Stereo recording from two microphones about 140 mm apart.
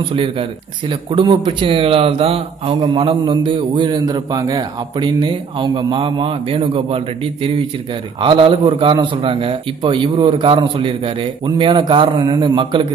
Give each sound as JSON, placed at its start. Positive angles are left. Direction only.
{"t": 0.1, "sound": "speech", "side_deg": -40}
{"t": 8.2, "sound": "speech", "side_deg": -35}